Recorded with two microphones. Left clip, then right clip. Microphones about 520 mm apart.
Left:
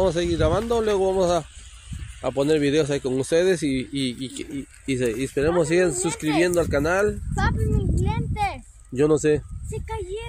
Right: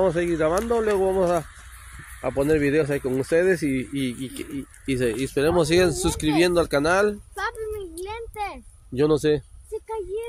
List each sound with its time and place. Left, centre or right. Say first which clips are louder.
0.0 s speech: even; right
8.0 s speech: left 6 dB; centre
8.9 s speech: left 1 dB; right
9.7 s speech: right 2 dB; centre